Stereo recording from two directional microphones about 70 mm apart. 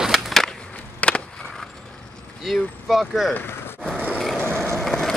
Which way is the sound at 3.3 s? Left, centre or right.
Left.